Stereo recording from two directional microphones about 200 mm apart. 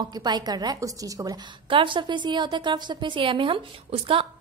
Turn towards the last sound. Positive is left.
turn(degrees=-25)  # may be behind; listen again after turning